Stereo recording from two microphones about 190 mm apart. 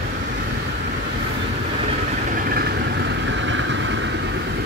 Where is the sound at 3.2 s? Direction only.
75° right (ahead or behind).